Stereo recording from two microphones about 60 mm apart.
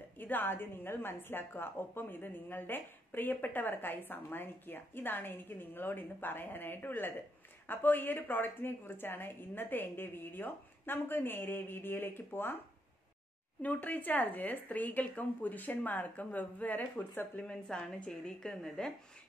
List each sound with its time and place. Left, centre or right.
0.2 s a woman's voice: left
13.6 s speech: left
17.4 s a woman's voice: centre